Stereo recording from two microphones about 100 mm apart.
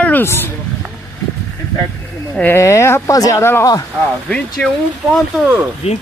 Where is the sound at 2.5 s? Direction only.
30° left (ahead or behind).